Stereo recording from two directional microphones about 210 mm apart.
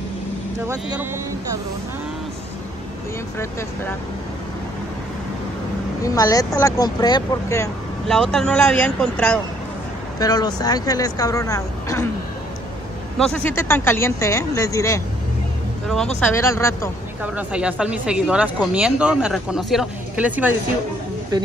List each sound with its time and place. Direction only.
6.0 s speech: 15° left (ahead or behind)
8.1 s speech: centre (ahead or behind)
10.1 s speech: 20° left (ahead or behind)
13.2 s speech: 5° left (ahead or behind)
16.2 s speech: 10° left (ahead or behind)
17.2 s speech: 5° right (ahead or behind)